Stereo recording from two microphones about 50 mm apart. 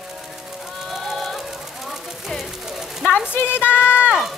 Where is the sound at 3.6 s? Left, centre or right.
Left.